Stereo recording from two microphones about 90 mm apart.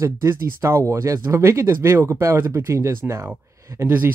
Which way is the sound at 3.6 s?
35° right (ahead or behind).